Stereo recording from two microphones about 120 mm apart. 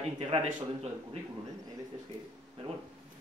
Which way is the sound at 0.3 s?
65° right (ahead or behind).